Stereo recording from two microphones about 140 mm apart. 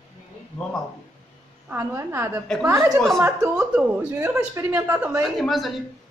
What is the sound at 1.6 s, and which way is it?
A woman's voice, 15° right (ahead or behind).